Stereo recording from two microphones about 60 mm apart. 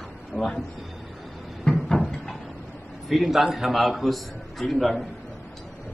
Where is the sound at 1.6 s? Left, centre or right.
Centre.